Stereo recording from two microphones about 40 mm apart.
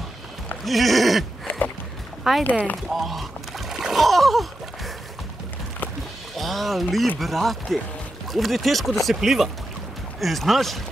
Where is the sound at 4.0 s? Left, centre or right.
Centre.